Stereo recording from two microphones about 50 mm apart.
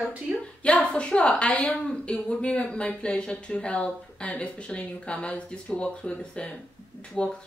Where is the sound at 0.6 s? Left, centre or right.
Left.